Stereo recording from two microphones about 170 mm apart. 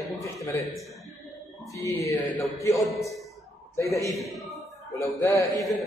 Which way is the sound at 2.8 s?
Centre (ahead or behind).